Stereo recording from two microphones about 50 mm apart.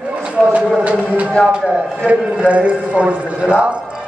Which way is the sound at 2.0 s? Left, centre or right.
Right.